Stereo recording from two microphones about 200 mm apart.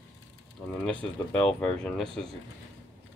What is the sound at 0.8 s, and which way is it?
Speech, 5° left (ahead or behind).